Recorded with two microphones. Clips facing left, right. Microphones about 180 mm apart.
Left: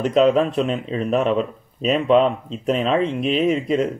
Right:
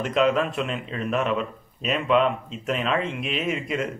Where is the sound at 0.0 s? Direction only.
35° left (ahead or behind).